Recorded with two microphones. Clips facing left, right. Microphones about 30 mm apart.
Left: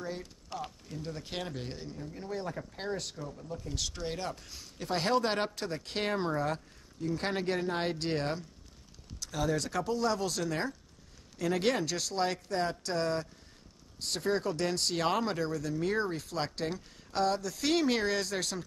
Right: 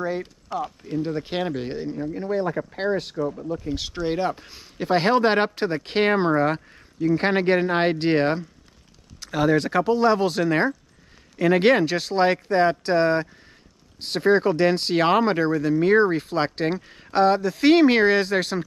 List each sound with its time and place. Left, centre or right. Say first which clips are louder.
0.0 s speech: right 12 dB; right
3.2 s speech: right 15 dB; right